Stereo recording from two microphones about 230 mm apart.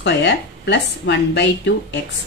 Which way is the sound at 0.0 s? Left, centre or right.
Left.